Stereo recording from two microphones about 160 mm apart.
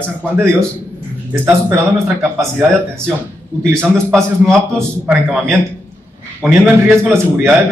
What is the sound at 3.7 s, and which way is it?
Speech, 5° left (ahead or behind).